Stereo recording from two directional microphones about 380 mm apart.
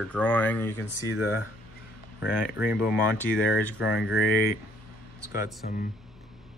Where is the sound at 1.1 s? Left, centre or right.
Centre.